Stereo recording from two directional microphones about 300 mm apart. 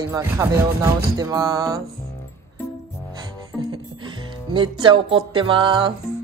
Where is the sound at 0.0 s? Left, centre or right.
Centre.